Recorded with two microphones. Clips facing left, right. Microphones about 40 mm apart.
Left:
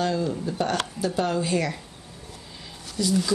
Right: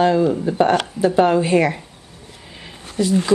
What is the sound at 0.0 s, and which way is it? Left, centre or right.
Speech, right.